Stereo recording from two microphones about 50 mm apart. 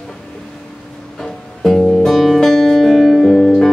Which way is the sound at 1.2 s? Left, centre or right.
Centre.